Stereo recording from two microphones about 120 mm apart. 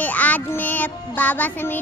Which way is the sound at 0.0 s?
15° left (ahead or behind).